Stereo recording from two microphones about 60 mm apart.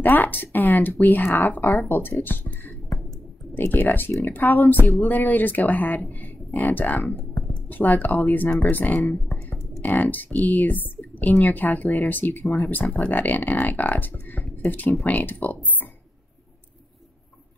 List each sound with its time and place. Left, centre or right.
0.0 s speech: left
9.5 s computer keyboard: left
10.4 s speech: left